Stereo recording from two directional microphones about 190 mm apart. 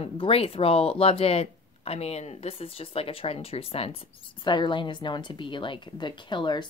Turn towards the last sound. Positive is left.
turn(degrees=25)  # may be behind; listen again after turning